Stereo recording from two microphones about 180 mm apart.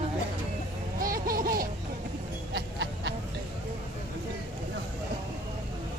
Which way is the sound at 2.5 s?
75° right (ahead or behind).